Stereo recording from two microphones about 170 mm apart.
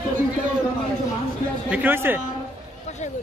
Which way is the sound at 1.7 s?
10° right (ahead or behind).